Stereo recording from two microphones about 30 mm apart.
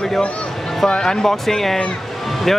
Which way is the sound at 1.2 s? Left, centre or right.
Centre.